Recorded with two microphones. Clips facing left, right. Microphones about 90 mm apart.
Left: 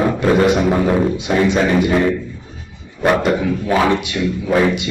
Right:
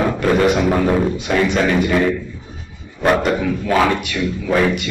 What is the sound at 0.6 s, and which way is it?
Music, 5° left (ahead or behind).